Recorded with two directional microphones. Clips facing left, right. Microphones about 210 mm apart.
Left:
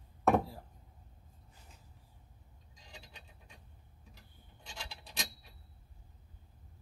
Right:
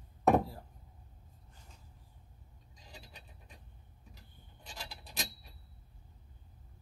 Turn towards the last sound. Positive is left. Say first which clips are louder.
# right 1 dB
turn(degrees=-5)  # may be behind; listen again after turning